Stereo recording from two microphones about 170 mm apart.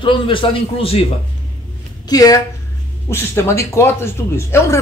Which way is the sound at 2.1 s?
20° left (ahead or behind).